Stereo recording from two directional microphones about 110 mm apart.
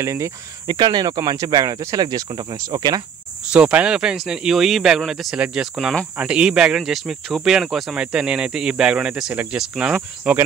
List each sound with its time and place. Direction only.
0.0 s speech: 30° right (ahead or behind)
0.7 s speech: 40° right (ahead or behind)
3.5 s speech: 10° right (ahead or behind)